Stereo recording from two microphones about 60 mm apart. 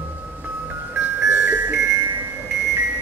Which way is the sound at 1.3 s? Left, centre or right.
Right.